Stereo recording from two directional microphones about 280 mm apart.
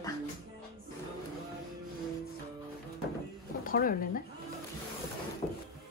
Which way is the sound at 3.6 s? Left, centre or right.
Left.